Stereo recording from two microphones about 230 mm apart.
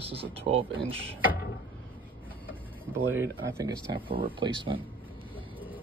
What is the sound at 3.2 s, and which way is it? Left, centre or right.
Speech, centre.